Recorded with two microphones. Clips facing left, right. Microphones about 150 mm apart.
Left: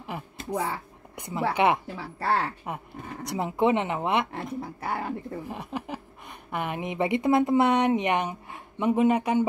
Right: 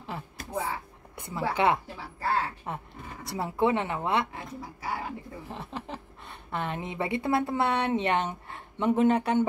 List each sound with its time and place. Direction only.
0.0 s a sound: 15° left (ahead or behind)
1.1 s speech: 20° left (ahead or behind)
2.1 s speech: 75° left (ahead or behind)
3.3 s speech: 20° left (ahead or behind)
4.6 s speech: 55° left (ahead or behind)
5.5 s a woman's voice: 15° left (ahead or behind)